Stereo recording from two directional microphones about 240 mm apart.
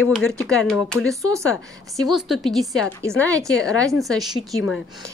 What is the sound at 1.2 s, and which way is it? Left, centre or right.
Speech, centre.